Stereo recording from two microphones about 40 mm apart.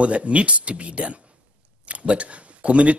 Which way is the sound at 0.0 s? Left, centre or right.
Right.